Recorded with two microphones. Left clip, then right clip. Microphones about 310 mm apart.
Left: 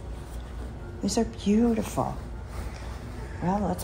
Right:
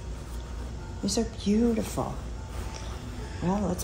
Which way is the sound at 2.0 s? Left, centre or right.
Left.